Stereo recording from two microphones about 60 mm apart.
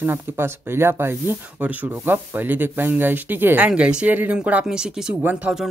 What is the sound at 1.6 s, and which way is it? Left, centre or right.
Speech, right.